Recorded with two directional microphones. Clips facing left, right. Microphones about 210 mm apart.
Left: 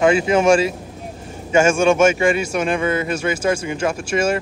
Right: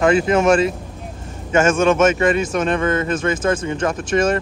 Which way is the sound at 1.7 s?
10° left (ahead or behind).